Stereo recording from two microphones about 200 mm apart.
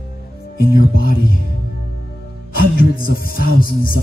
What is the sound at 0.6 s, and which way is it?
Music, 45° left (ahead or behind).